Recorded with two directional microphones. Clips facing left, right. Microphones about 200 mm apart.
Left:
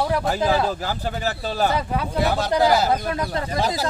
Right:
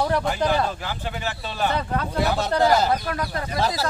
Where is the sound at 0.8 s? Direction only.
40° left (ahead or behind).